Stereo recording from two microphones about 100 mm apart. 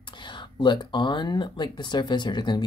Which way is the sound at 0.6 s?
50° left (ahead or behind).